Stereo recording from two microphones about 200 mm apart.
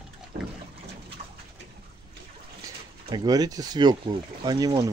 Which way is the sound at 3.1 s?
20° right (ahead or behind).